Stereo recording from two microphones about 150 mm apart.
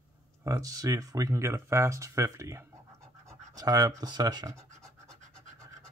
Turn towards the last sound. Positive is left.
turn(degrees=-20)  # may be behind; listen again after turning